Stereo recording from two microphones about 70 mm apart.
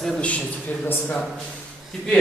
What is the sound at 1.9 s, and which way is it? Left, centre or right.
Speech, centre.